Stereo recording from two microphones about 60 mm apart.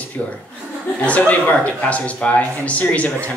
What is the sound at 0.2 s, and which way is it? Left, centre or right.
A man's voice, left.